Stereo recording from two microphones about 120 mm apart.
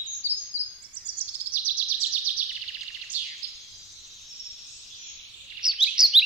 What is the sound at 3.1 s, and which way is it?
Bird, 15° right (ahead or behind).